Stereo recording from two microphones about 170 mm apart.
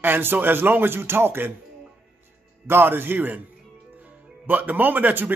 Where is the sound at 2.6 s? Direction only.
15° right (ahead or behind).